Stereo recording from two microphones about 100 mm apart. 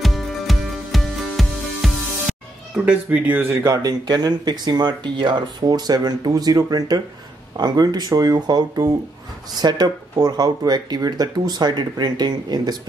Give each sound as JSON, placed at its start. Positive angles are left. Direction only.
{"t": 0.0, "sound": "music", "side_deg": 0}
{"t": 2.7, "sound": "speech", "side_deg": -15}
{"t": 3.6, "sound": "speech", "side_deg": -35}